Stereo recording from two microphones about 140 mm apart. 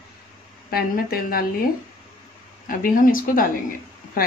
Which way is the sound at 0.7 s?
90° left.